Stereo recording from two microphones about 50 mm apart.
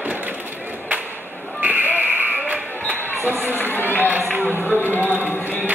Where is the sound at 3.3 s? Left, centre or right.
Right.